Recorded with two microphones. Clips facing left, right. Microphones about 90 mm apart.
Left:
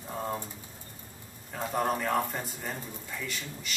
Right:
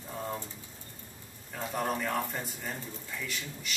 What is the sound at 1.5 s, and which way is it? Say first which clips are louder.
A man's voice: left 3 dB; 10° left (ahead or behind).